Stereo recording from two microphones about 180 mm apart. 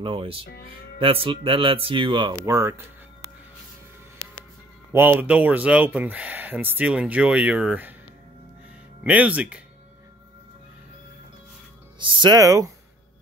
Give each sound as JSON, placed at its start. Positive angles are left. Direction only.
{"t": 0.0, "sound": "speech", "side_deg": -30}
{"t": 2.4, "sound": "speech", "side_deg": -15}
{"t": 4.9, "sound": "speech", "side_deg": -10}
{"t": 9.0, "sound": "speech", "side_deg": -10}
{"t": 12.0, "sound": "speech", "side_deg": -25}